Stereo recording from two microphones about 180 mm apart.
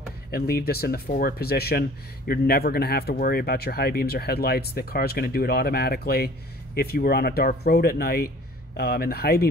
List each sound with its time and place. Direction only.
0.3 s speech: 60° left (ahead or behind)